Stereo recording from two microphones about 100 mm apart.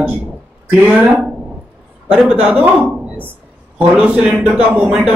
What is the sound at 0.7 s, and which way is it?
Speech, 5° right (ahead or behind).